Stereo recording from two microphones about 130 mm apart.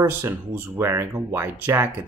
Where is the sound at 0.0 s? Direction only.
15° right (ahead or behind).